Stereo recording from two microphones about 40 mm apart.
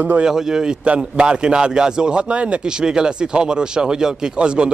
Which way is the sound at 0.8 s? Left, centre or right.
Right.